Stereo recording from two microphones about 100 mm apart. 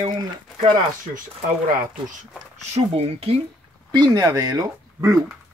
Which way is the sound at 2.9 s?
85° right.